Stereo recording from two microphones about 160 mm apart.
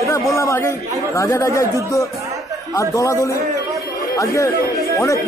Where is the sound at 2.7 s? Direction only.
20° left (ahead or behind).